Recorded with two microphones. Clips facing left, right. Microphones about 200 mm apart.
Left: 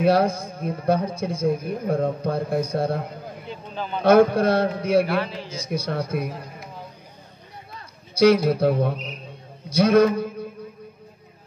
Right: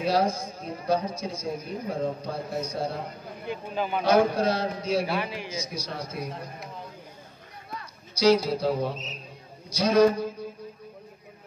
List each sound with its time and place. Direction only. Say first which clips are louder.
0.0 s a man's voice: left 6 dB; 55° left (ahead or behind)
3.6 s a man's voice: right 1 dB; 10° right (ahead or behind)
4.0 s a man's voice: left 7 dB; 55° left (ahead or behind)
5.1 s a man's voice: left 5 dB; 15° right (ahead or behind)
5.5 s a man's voice: left 7 dB; 55° left (ahead or behind)
8.1 s a man's voice: left 5 dB; 55° left (ahead or behind)